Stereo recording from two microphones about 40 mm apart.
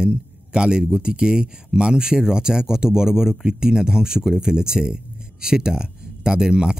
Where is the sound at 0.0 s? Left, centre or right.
Right.